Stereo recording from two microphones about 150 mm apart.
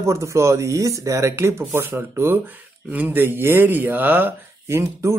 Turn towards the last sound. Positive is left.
turn(degrees=-20)  # may be behind; listen again after turning